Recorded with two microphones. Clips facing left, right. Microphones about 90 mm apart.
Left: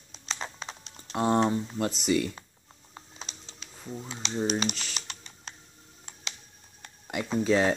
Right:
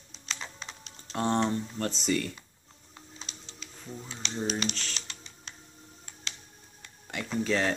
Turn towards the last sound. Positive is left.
turn(degrees=15)  # may be behind; listen again after turning